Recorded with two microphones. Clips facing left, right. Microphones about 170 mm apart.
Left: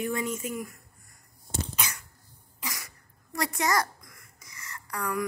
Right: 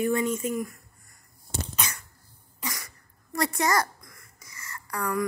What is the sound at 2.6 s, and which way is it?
Cough, 5° left (ahead or behind).